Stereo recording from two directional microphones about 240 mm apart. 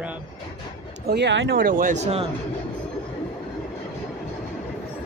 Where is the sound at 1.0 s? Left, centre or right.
Right.